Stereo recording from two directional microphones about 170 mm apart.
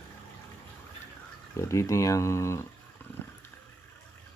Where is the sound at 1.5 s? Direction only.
15° left (ahead or behind).